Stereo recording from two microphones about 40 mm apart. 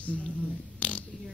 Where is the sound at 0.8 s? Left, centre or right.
Left.